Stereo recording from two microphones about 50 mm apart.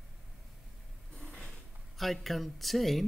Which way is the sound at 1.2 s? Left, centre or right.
Left.